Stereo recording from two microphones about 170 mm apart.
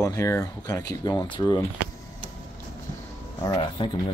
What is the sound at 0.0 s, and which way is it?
Speech, 15° left (ahead or behind).